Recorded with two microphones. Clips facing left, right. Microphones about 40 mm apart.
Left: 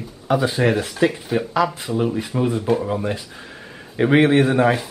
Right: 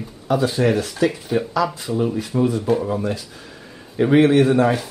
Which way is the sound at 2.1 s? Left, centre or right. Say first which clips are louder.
Right 1 dB; left.